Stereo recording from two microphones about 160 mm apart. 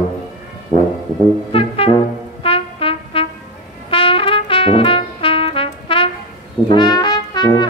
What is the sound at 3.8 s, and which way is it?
Trumpet, 35° left (ahead or behind).